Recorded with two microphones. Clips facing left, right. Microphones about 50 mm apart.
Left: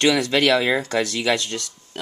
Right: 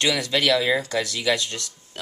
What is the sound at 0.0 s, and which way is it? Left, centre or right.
Speech, left.